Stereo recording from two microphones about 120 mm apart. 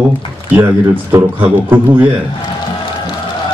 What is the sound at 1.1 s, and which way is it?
Speech, 20° right (ahead or behind).